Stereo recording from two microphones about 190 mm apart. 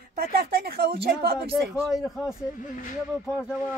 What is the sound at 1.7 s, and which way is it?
Speech, centre (ahead or behind).